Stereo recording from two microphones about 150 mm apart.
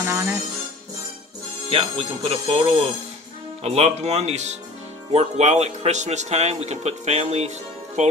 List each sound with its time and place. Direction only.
0.0 s music: 15° right (ahead or behind)
1.7 s a man's voice: 40° right (ahead or behind)